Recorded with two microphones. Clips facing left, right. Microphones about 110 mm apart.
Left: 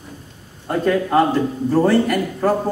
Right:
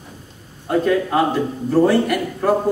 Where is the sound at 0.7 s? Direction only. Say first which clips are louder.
Right 1 dB; centre (ahead or behind).